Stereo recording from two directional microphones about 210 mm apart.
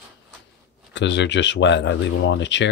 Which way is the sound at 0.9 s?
55° left (ahead or behind).